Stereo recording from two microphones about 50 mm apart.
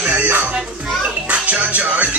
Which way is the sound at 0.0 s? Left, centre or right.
Right.